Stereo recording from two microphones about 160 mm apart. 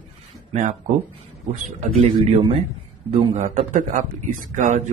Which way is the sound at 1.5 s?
45° right (ahead or behind).